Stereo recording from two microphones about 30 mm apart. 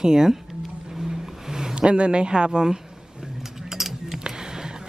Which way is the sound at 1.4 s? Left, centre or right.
Centre.